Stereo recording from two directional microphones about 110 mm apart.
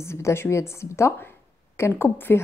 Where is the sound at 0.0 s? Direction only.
25° left (ahead or behind).